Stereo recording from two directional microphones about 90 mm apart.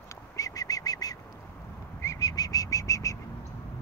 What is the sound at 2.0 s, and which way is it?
Bird, 35° left (ahead or behind).